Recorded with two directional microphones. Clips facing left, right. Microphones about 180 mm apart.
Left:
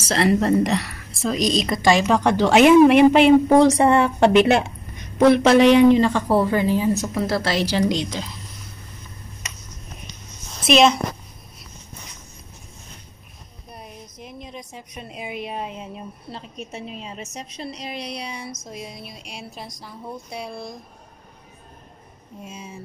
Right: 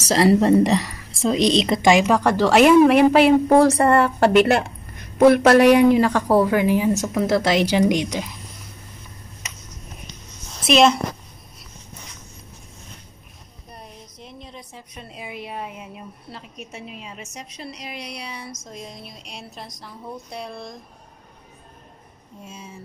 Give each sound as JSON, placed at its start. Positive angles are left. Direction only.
{"t": 0.1, "sound": "a woman's voice", "side_deg": -30}
{"t": 1.9, "sound": "speech", "side_deg": -10}
{"t": 10.7, "sound": "speech", "side_deg": 0}
{"t": 13.7, "sound": "a woman's voice", "side_deg": 10}
{"t": 18.7, "sound": "speech", "side_deg": 10}
{"t": 22.4, "sound": "speech", "side_deg": 15}